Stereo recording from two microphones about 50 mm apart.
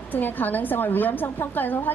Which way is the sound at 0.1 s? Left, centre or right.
Left.